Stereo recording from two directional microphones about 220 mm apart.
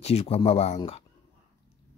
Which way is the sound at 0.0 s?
25° left (ahead or behind).